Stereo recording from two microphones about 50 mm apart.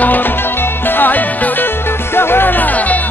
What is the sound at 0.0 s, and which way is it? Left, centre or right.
Music, left.